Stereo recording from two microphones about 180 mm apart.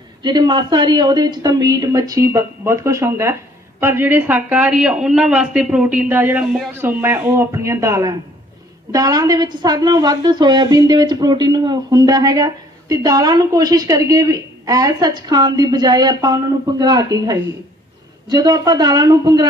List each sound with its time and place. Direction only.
0.2 s a woman's voice: 25° right (ahead or behind)